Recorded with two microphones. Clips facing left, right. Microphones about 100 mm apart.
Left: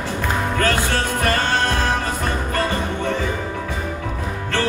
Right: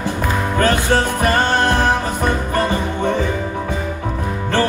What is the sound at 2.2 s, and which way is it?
Music, 20° right (ahead or behind).